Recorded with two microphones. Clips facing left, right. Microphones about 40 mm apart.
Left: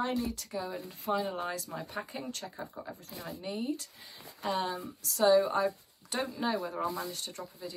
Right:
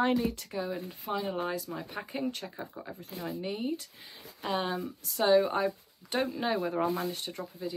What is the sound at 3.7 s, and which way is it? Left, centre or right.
Speech, right.